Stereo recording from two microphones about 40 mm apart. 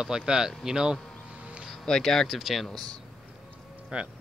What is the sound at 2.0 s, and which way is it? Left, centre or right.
Speech, centre.